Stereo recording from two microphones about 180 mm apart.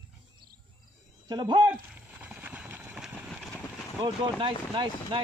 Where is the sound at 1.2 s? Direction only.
25° right (ahead or behind).